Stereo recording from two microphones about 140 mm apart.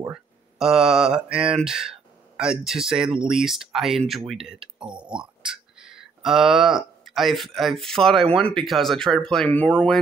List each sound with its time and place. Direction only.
0.1 s speech: 5° right (ahead or behind)
4.6 s speech: 35° right (ahead or behind)
4.9 s speech: 5° right (ahead or behind); by 9.9 s 10° left (ahead or behind)